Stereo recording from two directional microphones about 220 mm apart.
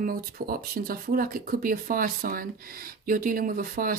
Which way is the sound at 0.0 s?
40° right (ahead or behind).